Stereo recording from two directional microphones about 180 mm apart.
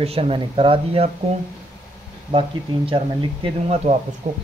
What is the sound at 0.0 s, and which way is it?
Speech, 35° right (ahead or behind).